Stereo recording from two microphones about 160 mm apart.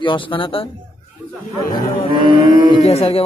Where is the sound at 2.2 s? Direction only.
55° left (ahead or behind).